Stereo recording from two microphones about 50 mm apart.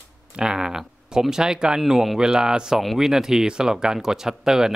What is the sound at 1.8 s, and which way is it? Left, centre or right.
Speech, centre.